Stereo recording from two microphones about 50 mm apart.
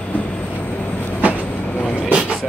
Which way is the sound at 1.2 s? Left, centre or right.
Right.